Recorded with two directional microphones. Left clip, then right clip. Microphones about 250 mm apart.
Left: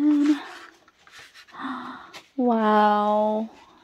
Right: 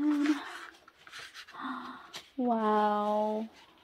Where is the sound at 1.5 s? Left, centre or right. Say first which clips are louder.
Left 7 dB; left.